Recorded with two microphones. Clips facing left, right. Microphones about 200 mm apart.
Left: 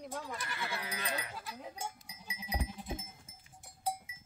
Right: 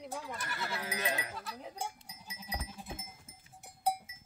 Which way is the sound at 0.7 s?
45° right (ahead or behind).